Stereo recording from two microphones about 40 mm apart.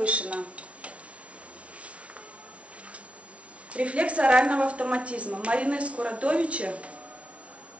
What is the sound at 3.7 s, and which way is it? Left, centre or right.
A woman's voice, right.